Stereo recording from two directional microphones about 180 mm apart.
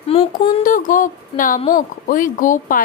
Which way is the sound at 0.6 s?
45° left (ahead or behind).